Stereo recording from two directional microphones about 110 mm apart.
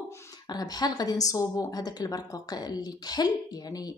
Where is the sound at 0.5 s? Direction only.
40° left (ahead or behind).